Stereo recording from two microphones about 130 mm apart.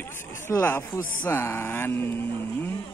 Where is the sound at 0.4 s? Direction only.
20° left (ahead or behind).